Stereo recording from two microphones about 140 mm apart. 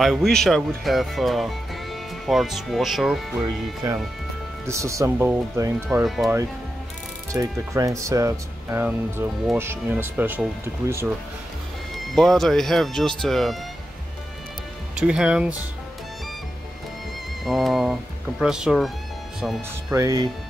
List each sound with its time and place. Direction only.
0.0 s speech: centre (ahead or behind)
4.6 s speech: 20° right (ahead or behind)
6.0 s speech: centre (ahead or behind)
7.3 s speech: 20° right (ahead or behind)
12.1 s speech: centre (ahead or behind)
15.0 s speech: 5° right (ahead or behind)
17.5 s speech: centre (ahead or behind)
19.9 s speech: 25° right (ahead or behind)